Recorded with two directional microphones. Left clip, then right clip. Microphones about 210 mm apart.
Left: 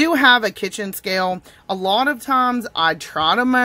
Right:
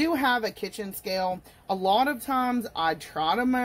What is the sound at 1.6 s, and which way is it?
Speech, 20° left (ahead or behind).